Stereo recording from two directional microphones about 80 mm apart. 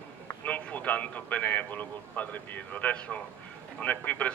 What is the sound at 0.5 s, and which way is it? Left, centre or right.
A man's voice, centre.